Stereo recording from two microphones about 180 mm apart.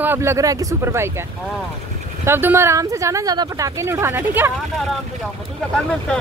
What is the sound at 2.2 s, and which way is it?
Speech, 15° right (ahead or behind).